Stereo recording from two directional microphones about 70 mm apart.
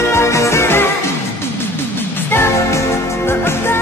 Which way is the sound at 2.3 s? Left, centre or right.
Left.